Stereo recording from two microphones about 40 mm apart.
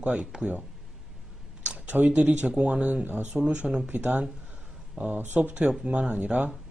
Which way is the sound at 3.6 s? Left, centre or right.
Right.